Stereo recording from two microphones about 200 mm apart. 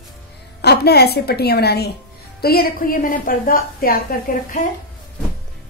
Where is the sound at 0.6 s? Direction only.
55° left (ahead or behind).